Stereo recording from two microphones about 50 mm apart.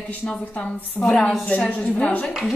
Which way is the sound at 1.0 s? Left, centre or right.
Centre.